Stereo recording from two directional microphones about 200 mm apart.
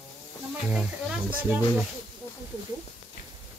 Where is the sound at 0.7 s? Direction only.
5° right (ahead or behind).